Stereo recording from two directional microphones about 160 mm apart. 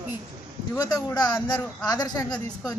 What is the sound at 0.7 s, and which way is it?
Speech, 25° left (ahead or behind).